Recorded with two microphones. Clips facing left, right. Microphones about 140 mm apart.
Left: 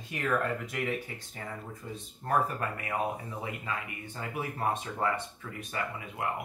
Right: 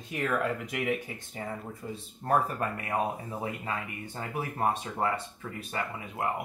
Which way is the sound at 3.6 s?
30° right (ahead or behind).